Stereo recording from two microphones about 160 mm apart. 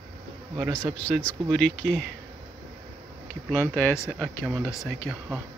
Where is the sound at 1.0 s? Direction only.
10° left (ahead or behind).